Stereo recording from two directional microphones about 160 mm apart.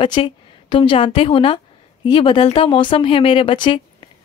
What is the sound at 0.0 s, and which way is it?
A woman's voice, 30° left (ahead or behind).